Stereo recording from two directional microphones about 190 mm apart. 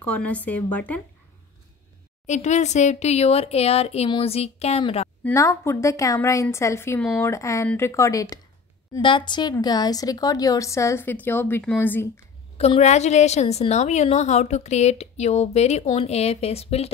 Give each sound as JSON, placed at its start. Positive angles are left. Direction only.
{"t": 0.0, "sound": "speech", "side_deg": 5}
{"t": 2.2, "sound": "a woman's voice", "side_deg": 40}
{"t": 5.2, "sound": "a woman's voice", "side_deg": 15}
{"t": 12.5, "sound": "a woman's voice", "side_deg": 35}